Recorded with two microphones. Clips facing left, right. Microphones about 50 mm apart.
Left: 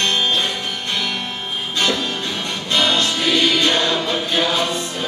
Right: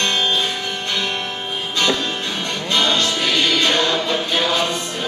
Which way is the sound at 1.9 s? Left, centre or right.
Centre.